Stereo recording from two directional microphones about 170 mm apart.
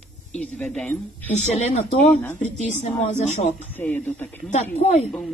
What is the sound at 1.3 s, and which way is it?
Speech, 45° left (ahead or behind).